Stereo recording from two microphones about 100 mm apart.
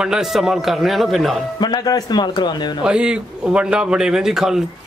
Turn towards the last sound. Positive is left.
turn(degrees=-5)  # may be behind; listen again after turning